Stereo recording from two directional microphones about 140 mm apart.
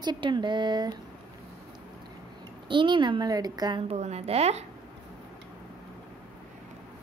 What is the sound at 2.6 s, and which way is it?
A woman's voice, 35° right (ahead or behind).